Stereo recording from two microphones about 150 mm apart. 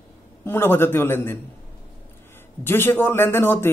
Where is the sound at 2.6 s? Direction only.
15° left (ahead or behind).